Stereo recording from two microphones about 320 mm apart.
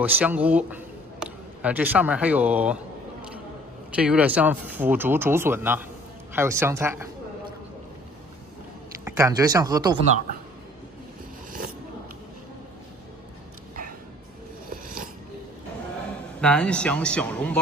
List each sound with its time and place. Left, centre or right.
0.0 s speech: centre
3.9 s a woman's voice: centre
9.0 s speech: centre
14.7 s a sound: right
16.3 s speech: centre